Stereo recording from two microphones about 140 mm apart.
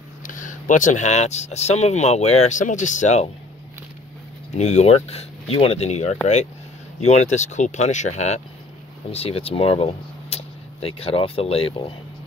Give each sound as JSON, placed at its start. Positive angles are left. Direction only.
{"t": 0.2, "sound": "speech", "side_deg": 65}
{"t": 4.6, "sound": "speech", "side_deg": 55}